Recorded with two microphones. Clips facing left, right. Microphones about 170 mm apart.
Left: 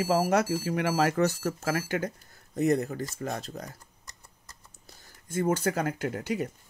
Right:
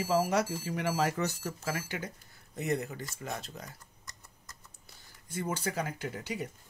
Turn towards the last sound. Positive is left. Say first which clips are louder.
# left 7 dB
turn(degrees=50)  # may be behind; listen again after turning